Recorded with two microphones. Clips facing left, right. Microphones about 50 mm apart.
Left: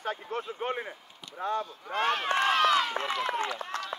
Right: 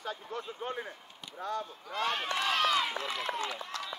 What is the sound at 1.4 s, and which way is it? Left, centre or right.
Speech, left.